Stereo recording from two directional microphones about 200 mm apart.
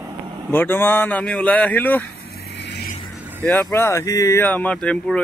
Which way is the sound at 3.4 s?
5° left (ahead or behind).